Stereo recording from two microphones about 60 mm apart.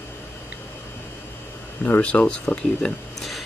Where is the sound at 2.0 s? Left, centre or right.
Centre.